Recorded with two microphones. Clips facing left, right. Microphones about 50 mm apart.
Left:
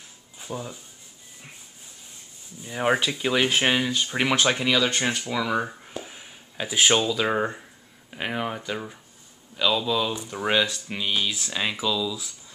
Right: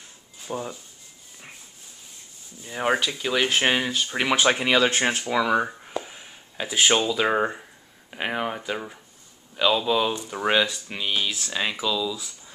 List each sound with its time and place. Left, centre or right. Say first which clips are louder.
0.5 s speech: right 3 dB; right
2.6 s speech: left 1 dB; centre
4.5 s speech: right 2 dB; centre
6.0 s speech: even; centre